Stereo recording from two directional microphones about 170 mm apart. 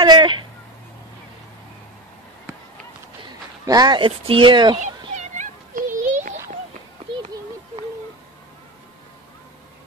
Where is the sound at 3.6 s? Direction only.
25° right (ahead or behind).